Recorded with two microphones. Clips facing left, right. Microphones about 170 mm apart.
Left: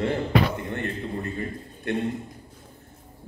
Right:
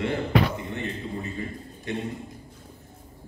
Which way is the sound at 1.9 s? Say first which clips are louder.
Left 4 dB; 60° left (ahead or behind).